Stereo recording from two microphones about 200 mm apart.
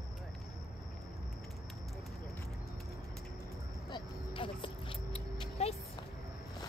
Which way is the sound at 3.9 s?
25° left (ahead or behind).